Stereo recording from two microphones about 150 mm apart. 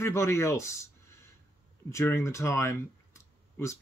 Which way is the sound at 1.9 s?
20° left (ahead or behind).